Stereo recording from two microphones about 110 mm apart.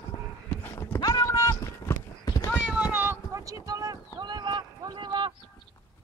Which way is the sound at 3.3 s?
30° right (ahead or behind).